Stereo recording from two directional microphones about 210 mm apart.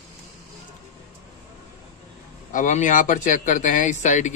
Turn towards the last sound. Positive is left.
turn(degrees=35)  # may be behind; listen again after turning